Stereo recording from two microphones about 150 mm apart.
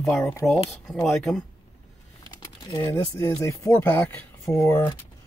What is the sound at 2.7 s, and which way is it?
Speech, 20° left (ahead or behind).